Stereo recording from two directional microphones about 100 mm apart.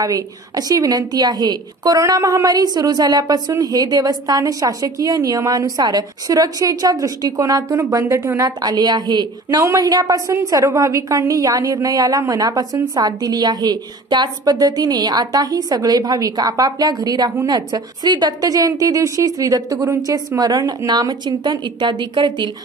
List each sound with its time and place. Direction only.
0.0 s a woman's voice: 40° right (ahead or behind)
8.5 s a woman's voice: 45° right (ahead or behind)